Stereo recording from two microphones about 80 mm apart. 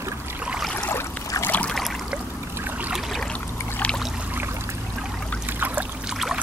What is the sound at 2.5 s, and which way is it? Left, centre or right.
Boat, right.